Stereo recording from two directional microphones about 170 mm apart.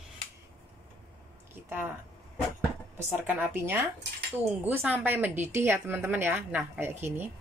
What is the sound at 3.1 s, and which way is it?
Speech, 10° right (ahead or behind).